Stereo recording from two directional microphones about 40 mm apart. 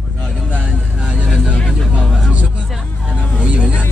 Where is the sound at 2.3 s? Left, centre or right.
Right.